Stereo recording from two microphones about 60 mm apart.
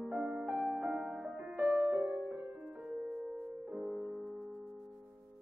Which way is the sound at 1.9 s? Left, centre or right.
Right.